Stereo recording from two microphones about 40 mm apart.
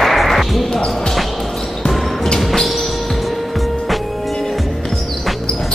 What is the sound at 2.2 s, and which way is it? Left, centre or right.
Train, centre.